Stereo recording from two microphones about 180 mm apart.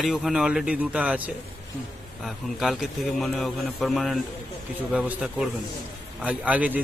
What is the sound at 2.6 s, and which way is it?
Speech, centre (ahead or behind).